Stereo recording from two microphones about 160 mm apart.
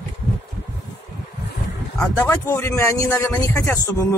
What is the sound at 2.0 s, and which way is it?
Speech, 20° left (ahead or behind).